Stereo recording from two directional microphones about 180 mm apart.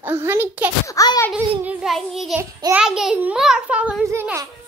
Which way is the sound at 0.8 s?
20° left (ahead or behind).